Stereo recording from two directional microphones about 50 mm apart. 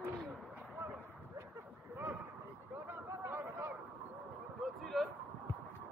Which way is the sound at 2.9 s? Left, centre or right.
Right.